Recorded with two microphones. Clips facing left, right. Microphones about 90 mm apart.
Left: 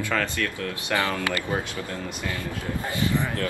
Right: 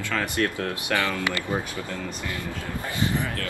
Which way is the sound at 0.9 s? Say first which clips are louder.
Left 1 dB; 20° left (ahead or behind).